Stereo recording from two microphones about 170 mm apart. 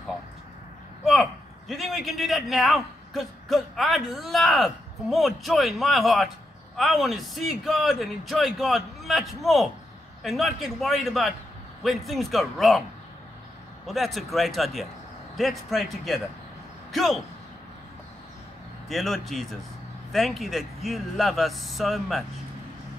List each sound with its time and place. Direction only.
1.7 s a man's voice: centre (ahead or behind)
13.8 s a man's voice: centre (ahead or behind)
18.9 s a man's voice: centre (ahead or behind)